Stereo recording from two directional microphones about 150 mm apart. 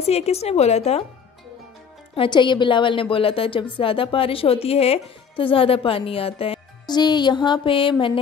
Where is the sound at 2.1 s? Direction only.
30° left (ahead or behind).